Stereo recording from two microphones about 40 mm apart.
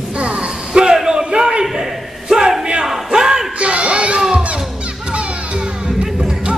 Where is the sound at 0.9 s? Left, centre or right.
Centre.